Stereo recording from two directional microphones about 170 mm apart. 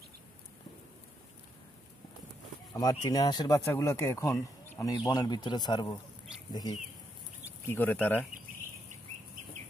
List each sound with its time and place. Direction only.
2.7 s speech: 20° left (ahead or behind)
7.6 s speech: 10° left (ahead or behind)